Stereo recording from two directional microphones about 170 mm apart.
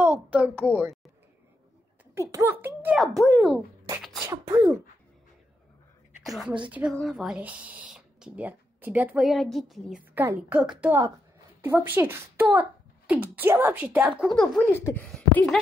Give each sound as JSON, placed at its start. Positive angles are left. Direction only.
{"t": 0.0, "sound": "a child's voice", "side_deg": -10}
{"t": 2.3, "sound": "speech", "side_deg": -10}
{"t": 6.2, "sound": "a woman's voice", "side_deg": 0}
{"t": 14.7, "sound": "speech", "side_deg": 15}
{"t": 15.1, "sound": "speech", "side_deg": 5}